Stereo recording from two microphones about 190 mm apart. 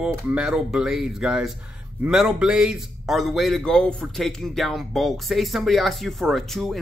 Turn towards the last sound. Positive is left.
turn(degrees=0)  # may be behind; listen again after turning